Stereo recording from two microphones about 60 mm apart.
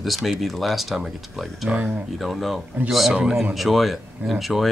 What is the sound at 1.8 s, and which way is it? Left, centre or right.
Speech, right.